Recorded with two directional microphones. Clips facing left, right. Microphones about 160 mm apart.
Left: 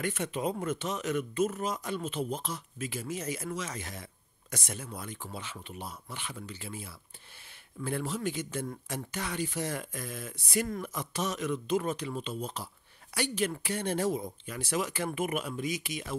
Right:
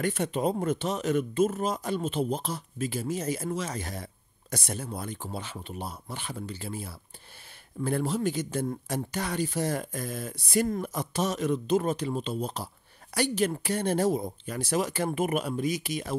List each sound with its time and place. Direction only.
0.0 s speech: 35° right (ahead or behind)